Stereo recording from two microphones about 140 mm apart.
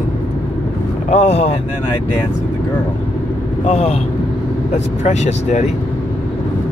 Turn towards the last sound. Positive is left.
turn(degrees=55)  # may be behind; listen again after turning